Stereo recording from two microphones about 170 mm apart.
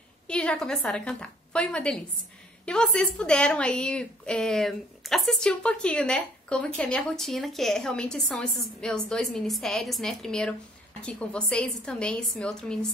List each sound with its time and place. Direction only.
0.3 s a woman's voice: 5° left (ahead or behind)